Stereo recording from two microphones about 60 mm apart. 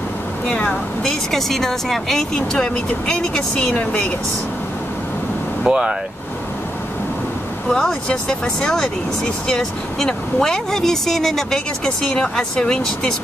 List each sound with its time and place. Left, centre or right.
0.5 s speech: centre
1.3 s speech: centre; by 4.0 s left
5.7 s speech: centre
7.7 s speech: centre